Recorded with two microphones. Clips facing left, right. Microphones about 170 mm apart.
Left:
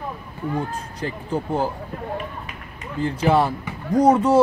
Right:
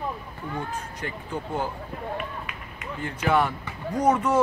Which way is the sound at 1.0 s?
35° left (ahead or behind).